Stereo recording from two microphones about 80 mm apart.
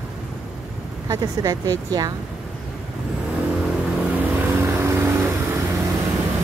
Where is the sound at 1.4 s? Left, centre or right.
Right.